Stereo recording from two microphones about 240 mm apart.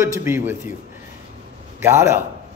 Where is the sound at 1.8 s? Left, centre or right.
Centre.